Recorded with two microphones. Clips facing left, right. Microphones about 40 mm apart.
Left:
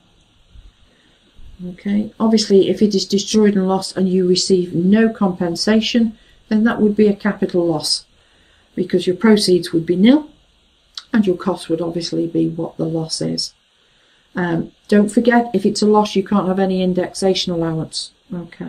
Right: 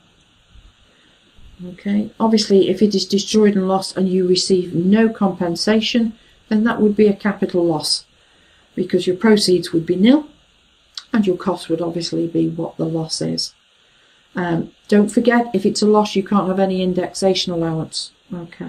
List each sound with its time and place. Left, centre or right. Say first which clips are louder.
1.8 s speech: even; centre
18.6 s speech: even; right